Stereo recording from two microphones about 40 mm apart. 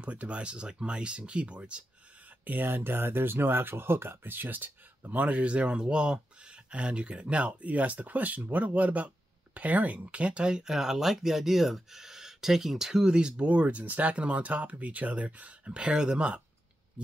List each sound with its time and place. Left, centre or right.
0.0 s speech: right
2.4 s speech: right
5.2 s speech: right
13.5 s speech: right